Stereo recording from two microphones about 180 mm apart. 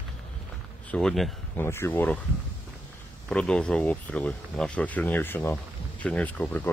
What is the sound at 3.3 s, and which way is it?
Speech, 5° left (ahead or behind).